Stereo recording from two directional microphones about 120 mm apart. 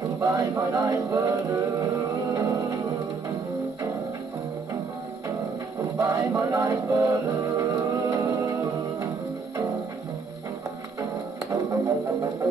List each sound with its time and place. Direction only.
0.2 s music: 25° right (ahead or behind)
5.8 s music: 25° right (ahead or behind)
11.5 s music: 25° right (ahead or behind)